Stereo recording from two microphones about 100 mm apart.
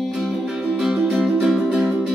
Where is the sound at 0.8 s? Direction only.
5° right (ahead or behind).